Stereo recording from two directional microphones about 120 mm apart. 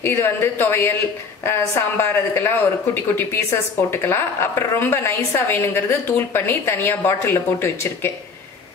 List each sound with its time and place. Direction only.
0.0 s a woman's voice: 20° left (ahead or behind)